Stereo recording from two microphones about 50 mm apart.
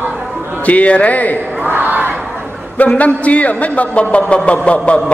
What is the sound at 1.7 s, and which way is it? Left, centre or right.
Battle cry, right.